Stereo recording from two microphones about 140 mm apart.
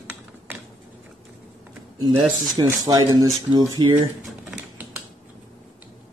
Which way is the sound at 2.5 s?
25° right (ahead or behind).